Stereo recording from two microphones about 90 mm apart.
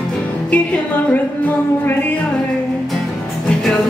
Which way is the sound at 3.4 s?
10° left (ahead or behind).